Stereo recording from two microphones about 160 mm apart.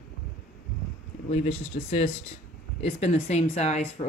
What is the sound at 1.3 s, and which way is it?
Speech, 40° left (ahead or behind).